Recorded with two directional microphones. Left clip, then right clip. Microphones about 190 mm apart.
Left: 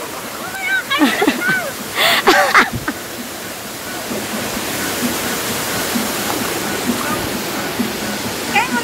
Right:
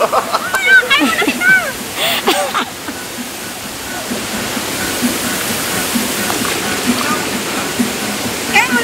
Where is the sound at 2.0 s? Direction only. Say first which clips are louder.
Left 3 dB; 20° left (ahead or behind).